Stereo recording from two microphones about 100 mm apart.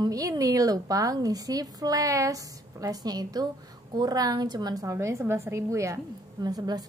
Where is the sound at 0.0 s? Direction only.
35° right (ahead or behind).